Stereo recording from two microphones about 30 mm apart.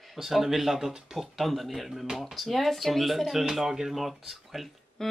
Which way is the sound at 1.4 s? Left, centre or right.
Centre.